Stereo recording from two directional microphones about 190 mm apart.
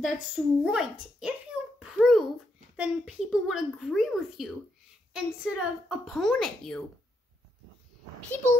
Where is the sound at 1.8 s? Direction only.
Centre (ahead or behind).